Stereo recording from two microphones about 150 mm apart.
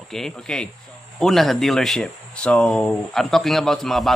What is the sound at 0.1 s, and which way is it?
Speech, 5° left (ahead or behind).